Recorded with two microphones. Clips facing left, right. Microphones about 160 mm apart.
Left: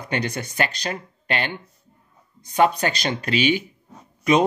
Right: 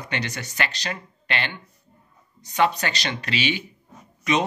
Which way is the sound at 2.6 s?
45° left (ahead or behind).